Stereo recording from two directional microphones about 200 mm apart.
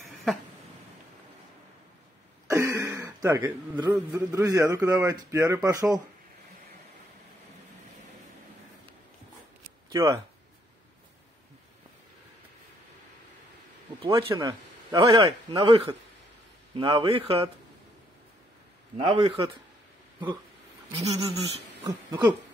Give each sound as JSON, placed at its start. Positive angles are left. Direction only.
{"t": 0.0, "sound": "a sound", "side_deg": 0}
{"t": 2.4, "sound": "throat clearing", "side_deg": -15}
{"t": 3.9, "sound": "a man's voice", "side_deg": -10}
{"t": 9.8, "sound": "speech", "side_deg": -15}
{"t": 14.2, "sound": "speech", "side_deg": -20}
{"t": 18.9, "sound": "speech", "side_deg": -25}
{"t": 21.1, "sound": "speech", "side_deg": -30}
{"t": 21.8, "sound": "a sound", "side_deg": -15}